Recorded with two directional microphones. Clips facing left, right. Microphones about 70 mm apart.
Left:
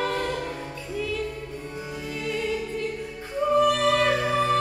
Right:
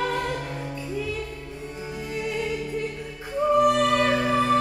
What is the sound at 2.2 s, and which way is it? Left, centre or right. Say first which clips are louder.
Music: right 1 dB; centre.